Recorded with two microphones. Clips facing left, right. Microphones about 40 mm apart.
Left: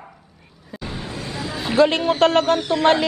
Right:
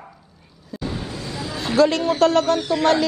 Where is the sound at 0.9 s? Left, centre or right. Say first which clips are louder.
Right 1 dB; centre.